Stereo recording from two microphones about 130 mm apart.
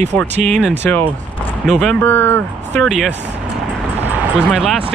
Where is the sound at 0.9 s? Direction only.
15° left (ahead or behind).